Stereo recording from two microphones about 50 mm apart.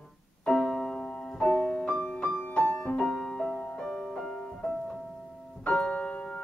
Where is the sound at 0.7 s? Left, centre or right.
Centre.